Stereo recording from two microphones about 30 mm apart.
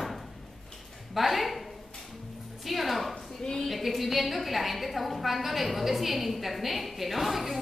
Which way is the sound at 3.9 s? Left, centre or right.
Centre.